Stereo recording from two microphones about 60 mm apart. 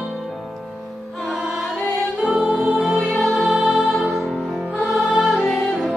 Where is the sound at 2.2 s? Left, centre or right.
Centre.